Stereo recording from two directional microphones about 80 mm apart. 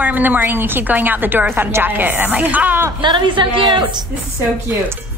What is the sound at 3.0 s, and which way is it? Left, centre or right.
A woman's voice, right.